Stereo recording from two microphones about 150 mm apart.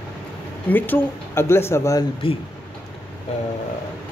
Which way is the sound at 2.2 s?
35° left (ahead or behind).